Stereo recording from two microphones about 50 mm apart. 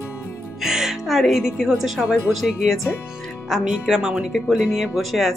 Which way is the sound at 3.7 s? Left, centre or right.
Centre.